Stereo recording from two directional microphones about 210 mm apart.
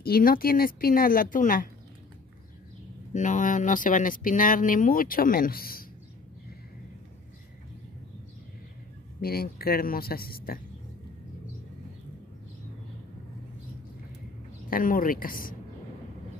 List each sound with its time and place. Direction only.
0.0 s speech: 45° left (ahead or behind)
3.1 s speech: 35° left (ahead or behind)
9.2 s speech: 45° left (ahead or behind)
14.7 s speech: 40° left (ahead or behind)